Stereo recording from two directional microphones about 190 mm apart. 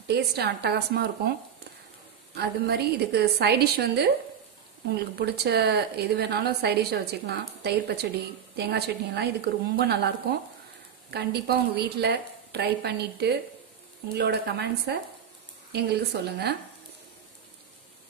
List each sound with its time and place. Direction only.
0.1 s a woman's voice: 60° right (ahead or behind)
2.3 s a woman's voice: 60° right (ahead or behind)
11.1 s a woman's voice: 60° right (ahead or behind)